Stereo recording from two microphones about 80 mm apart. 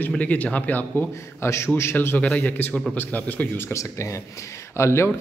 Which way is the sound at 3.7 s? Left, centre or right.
Left.